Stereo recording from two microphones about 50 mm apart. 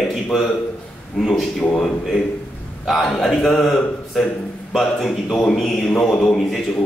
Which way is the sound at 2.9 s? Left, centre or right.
Centre.